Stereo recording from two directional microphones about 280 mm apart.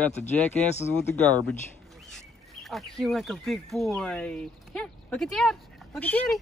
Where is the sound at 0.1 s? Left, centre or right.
Left.